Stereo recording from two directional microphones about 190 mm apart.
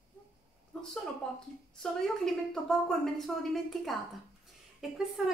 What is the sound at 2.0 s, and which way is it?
A woman's voice, centre (ahead or behind).